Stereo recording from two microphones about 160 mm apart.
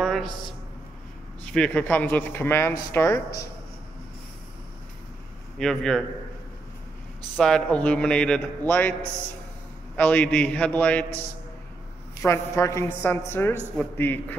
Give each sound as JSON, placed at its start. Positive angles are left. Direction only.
{"t": 0.0, "sound": "a sound", "side_deg": 0}
{"t": 1.4, "sound": "a woman's voice", "side_deg": 5}
{"t": 5.6, "sound": "a man's voice", "side_deg": 5}
{"t": 7.3, "sound": "a man's voice", "side_deg": 5}
{"t": 9.9, "sound": "a woman's voice", "side_deg": 10}
{"t": 12.2, "sound": "a woman's voice", "side_deg": 20}